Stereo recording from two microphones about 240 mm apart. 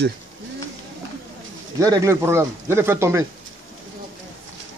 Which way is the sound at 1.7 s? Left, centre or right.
Centre.